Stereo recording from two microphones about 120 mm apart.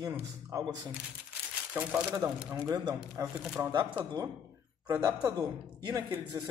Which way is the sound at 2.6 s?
30° right (ahead or behind).